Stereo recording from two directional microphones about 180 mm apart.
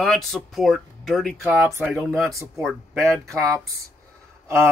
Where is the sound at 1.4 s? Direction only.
10° right (ahead or behind).